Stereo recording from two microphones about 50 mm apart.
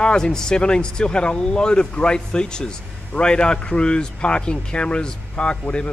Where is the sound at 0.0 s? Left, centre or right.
Centre.